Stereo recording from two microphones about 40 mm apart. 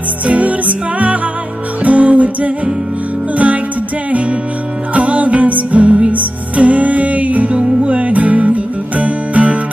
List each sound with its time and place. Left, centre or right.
0.3 s music: right
4.1 s music: right